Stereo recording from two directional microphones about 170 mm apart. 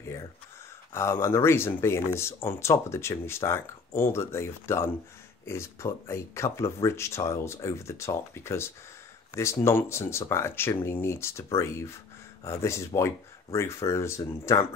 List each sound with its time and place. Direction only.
0.9 s speech: 15° left (ahead or behind)
12.4 s speech: 15° left (ahead or behind)